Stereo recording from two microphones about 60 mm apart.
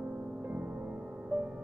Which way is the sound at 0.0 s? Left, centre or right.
Right.